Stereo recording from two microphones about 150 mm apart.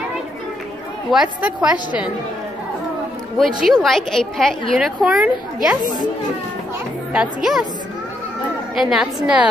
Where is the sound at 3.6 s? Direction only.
Centre (ahead or behind).